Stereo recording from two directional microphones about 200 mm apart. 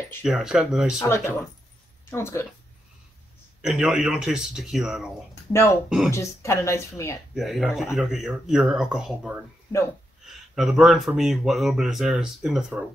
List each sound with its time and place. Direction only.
0.2 s speech: 5° right (ahead or behind)
0.9 s speech: 15° left (ahead or behind)
3.6 s speech: 5° right (ahead or behind)
5.5 s speech: 15° left (ahead or behind)
7.3 s speech: centre (ahead or behind)